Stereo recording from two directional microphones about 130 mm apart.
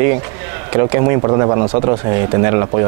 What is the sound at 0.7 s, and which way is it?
Speech, 25° right (ahead or behind).